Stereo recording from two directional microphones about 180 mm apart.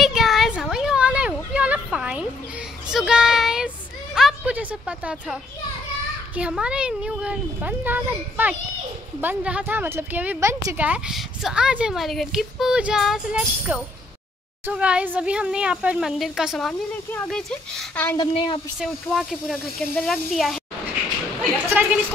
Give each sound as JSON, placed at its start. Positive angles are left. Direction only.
{"t": 0.0, "sound": "a sound", "side_deg": 0}
{"t": 6.3, "sound": "a child's voice", "side_deg": -5}
{"t": 18.1, "sound": "a woman's voice", "side_deg": 25}
{"t": 18.8, "sound": "speech", "side_deg": 0}
{"t": 21.6, "sound": "a woman's voice", "side_deg": -10}